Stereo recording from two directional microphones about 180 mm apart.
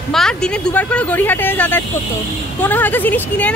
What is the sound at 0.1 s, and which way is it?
Speech, 5° left (ahead or behind).